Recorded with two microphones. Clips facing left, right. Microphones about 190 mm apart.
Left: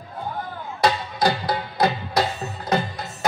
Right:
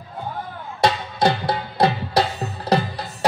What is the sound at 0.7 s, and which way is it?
Music, 25° right (ahead or behind).